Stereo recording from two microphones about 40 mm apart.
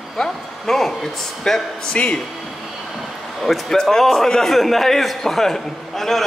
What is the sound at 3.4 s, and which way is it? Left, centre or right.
A man's voice, centre.